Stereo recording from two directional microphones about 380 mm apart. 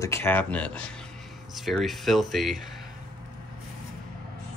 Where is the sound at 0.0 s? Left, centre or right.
Centre.